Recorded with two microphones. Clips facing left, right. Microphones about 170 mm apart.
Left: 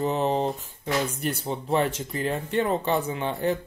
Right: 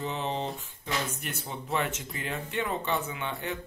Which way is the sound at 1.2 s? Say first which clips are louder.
Left 9 dB; 35° left (ahead or behind).